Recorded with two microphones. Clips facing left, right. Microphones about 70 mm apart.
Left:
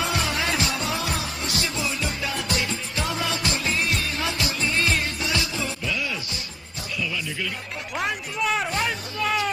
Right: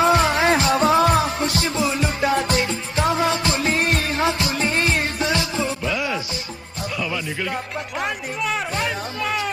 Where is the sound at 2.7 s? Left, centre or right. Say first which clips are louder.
Right 7 dB; right.